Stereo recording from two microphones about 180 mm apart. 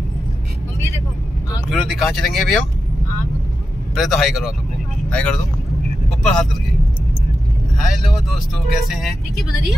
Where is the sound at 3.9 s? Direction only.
Centre (ahead or behind).